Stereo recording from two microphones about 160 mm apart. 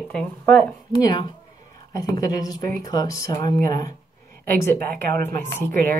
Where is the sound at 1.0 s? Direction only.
30° left (ahead or behind).